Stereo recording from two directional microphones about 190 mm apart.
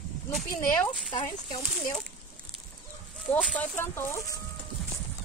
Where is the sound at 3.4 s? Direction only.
5° left (ahead or behind).